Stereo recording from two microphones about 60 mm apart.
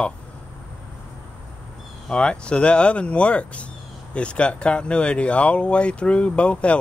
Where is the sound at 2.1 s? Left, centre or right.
Centre.